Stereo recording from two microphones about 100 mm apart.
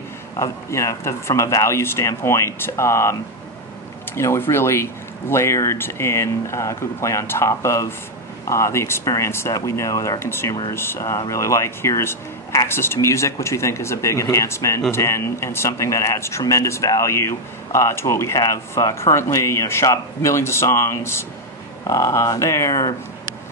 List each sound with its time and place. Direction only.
0.4 s speech: 30° left (ahead or behind)